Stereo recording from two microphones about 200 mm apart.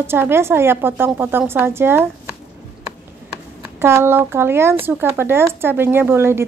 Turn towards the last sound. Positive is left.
turn(degrees=-10)  # may be behind; listen again after turning